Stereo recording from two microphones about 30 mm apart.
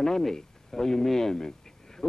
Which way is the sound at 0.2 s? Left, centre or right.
Centre.